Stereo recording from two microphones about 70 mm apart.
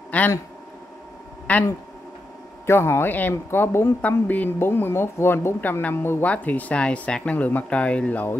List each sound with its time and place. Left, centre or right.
0.1 s speech: left
1.5 s speech: centre
2.6 s speech: left
4.3 s speech: left
4.6 s speech: left
5.6 s speech: left